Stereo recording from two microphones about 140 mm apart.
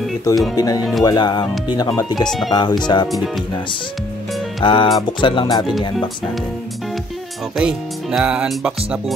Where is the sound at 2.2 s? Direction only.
5° left (ahead or behind).